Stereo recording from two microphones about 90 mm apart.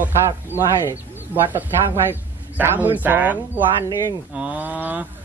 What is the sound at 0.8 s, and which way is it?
Speech, 25° right (ahead or behind).